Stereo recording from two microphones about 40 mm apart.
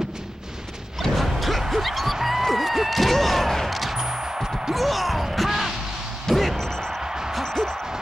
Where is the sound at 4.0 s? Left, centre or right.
Centre.